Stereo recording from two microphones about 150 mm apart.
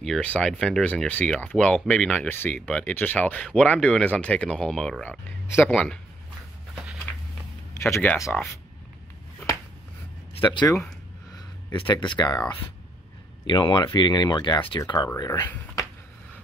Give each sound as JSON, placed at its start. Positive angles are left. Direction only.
{"t": 0.0, "sound": "speech", "side_deg": 5}
{"t": 7.8, "sound": "speech", "side_deg": 15}
{"t": 10.3, "sound": "speech", "side_deg": 35}
{"t": 15.5, "sound": "a sound", "side_deg": 20}